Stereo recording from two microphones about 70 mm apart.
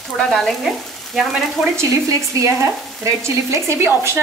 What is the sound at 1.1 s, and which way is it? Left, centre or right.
Frying, centre.